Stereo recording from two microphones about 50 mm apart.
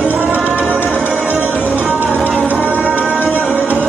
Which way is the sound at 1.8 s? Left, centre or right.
Right.